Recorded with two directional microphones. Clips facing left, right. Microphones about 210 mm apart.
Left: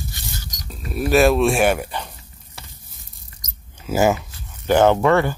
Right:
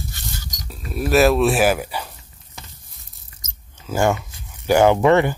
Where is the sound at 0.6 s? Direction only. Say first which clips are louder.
Left 1 dB; centre (ahead or behind).